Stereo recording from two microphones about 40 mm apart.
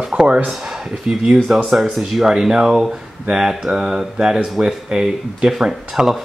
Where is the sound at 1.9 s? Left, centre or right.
Centre.